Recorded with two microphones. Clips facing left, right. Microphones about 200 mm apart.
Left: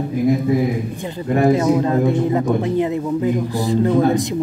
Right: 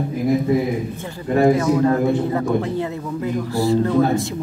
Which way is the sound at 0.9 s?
20° left (ahead or behind).